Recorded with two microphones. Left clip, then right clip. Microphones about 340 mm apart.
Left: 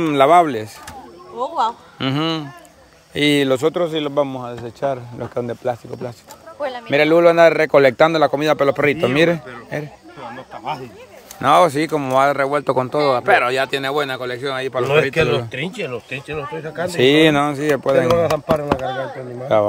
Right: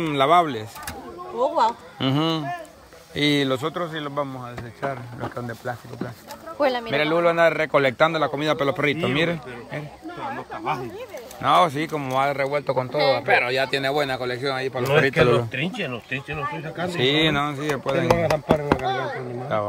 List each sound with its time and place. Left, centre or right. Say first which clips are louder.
0.0 s speech: left 6 dB; centre
11.4 s speech: left 5 dB; centre
15.5 s speech: left 3 dB; left